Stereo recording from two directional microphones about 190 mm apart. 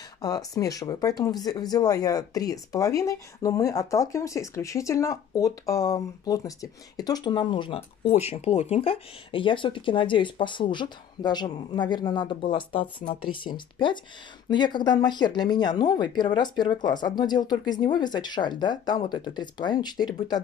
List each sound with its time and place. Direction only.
0.2 s speech: 20° left (ahead or behind)